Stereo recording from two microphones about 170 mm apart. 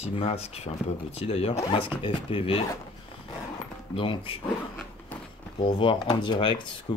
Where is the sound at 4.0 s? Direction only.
30° left (ahead or behind).